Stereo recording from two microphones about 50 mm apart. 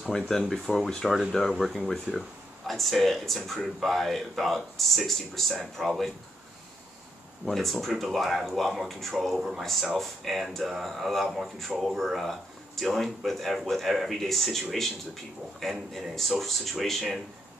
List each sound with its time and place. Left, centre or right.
0.1 s speech: centre
7.4 s speech: centre
15.9 s speech: centre